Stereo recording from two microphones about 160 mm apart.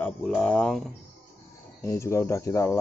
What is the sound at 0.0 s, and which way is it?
Speech, 10° left (ahead or behind).